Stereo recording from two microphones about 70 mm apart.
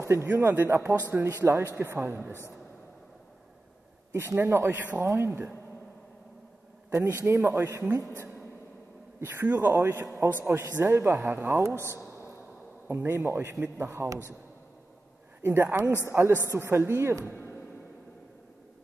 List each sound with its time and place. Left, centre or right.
0.0 s speech: right
4.1 s a man's voice: right
6.9 s speech: right
9.2 s speech: right
9.6 s a man's voice: right
11.9 s a sound: left
12.8 s speech: right
13.8 s a man's voice: right
15.4 s speech: right